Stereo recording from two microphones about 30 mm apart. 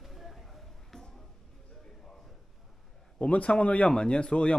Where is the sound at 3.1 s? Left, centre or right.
Left.